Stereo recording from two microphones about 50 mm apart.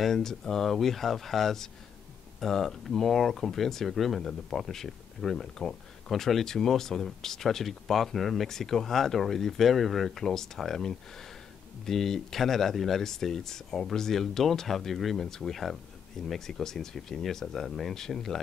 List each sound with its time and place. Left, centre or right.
0.0 s speech: centre